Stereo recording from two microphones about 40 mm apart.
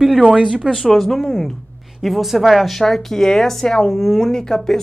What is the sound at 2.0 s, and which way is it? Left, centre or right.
Speech, centre.